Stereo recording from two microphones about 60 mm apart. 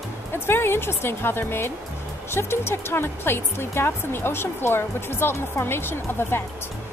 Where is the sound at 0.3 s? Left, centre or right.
Left.